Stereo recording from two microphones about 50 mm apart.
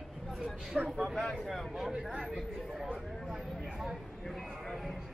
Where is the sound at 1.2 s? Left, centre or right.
Centre.